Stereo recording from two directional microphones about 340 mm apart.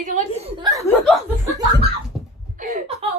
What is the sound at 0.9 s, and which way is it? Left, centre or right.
Speech, centre.